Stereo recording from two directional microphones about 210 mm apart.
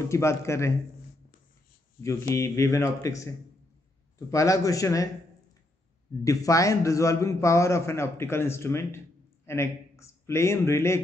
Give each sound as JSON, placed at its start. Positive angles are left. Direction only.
{"t": 0.1, "sound": "a man's voice", "side_deg": 15}
{"t": 2.0, "sound": "a man's voice", "side_deg": 15}
{"t": 4.3, "sound": "a man's voice", "side_deg": 15}
{"t": 6.2, "sound": "a man's voice", "side_deg": 15}